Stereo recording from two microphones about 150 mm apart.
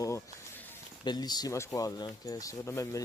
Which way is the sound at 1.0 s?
25° left (ahead or behind).